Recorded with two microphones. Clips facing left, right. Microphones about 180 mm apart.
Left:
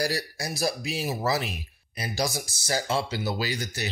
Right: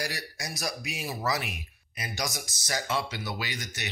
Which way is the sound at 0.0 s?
35° left (ahead or behind).